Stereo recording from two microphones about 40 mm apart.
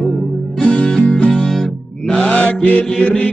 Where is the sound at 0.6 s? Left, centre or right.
Left.